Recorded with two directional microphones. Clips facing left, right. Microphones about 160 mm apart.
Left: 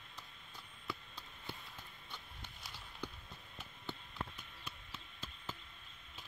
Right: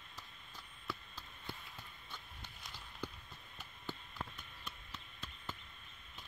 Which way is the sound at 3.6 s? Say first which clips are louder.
Right 1 dB; centre (ahead or behind).